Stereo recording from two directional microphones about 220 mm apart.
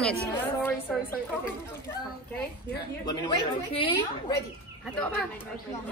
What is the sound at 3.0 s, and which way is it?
A woman's voice, 20° left (ahead or behind).